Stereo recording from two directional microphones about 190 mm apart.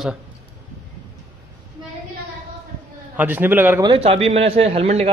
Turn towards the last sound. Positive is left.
turn(degrees=-35)  # may be behind; listen again after turning